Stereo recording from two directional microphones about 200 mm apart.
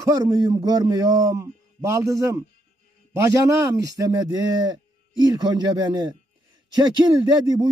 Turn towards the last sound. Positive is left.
turn(degrees=-20)  # may be behind; listen again after turning